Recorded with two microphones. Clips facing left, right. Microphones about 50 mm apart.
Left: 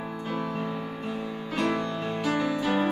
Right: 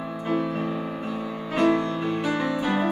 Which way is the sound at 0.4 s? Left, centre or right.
Centre.